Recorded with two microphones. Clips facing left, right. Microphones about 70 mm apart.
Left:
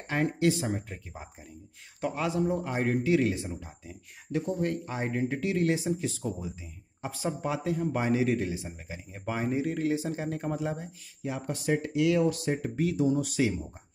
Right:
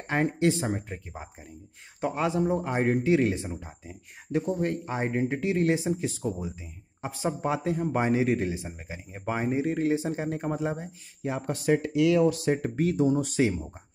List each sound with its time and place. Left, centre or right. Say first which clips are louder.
0.0 s a man's voice: right 2 dB; right